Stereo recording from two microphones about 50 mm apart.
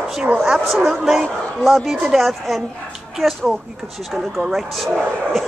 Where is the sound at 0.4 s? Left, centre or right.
Centre.